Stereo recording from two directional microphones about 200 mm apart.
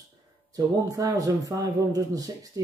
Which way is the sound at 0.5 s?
15° right (ahead or behind).